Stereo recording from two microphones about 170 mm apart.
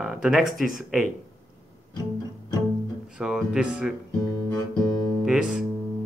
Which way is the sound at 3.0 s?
5° right (ahead or behind).